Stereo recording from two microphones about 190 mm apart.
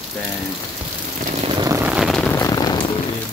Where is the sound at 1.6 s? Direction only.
10° right (ahead or behind).